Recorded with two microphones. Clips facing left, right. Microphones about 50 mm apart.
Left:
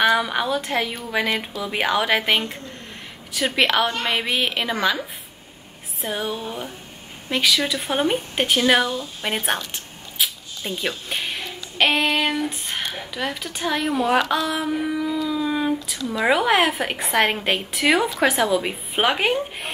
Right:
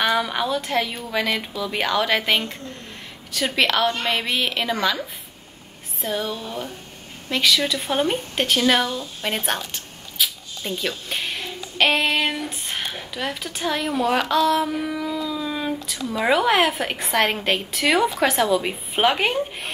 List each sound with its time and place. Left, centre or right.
0.0 s a woman's voice: centre
6.0 s speech: centre
10.2 s zipper: left
10.8 s speech: centre
11.1 s a sound: centre
14.5 s speech: centre
15.2 s a sound: centre
16.2 s a woman's voice: centre